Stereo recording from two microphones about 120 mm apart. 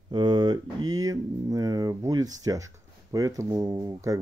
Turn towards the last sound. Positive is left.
turn(degrees=-30)  # may be behind; listen again after turning